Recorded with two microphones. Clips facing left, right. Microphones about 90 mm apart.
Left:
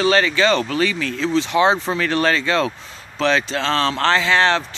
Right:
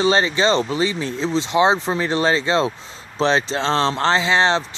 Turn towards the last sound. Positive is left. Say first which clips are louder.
# left 1 dB
turn(degrees=-25)  # may be behind; listen again after turning